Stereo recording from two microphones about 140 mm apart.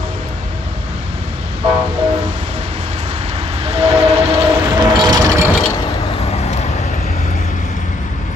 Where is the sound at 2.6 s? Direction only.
50° right (ahead or behind).